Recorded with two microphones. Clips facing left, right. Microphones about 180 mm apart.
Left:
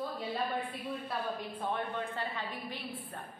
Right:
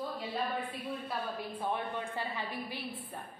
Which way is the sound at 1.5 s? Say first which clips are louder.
Even; 10° right (ahead or behind).